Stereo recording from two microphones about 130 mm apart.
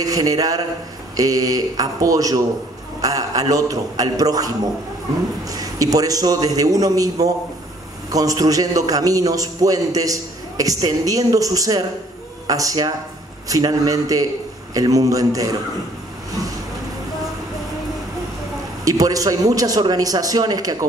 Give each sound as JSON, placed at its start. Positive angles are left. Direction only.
{"t": 0.0, "sound": "a man's voice", "side_deg": -30}
{"t": 18.9, "sound": "a man's voice", "side_deg": -25}